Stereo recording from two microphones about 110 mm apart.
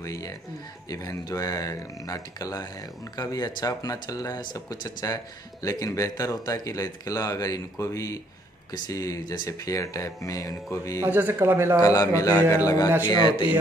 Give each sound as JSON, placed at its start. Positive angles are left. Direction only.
{"t": 0.0, "sound": "speech", "side_deg": 30}
{"t": 11.0, "sound": "speech", "side_deg": -20}
{"t": 11.8, "sound": "a man's voice", "side_deg": 30}